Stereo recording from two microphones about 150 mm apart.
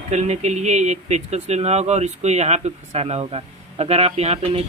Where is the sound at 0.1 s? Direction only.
50° right (ahead or behind).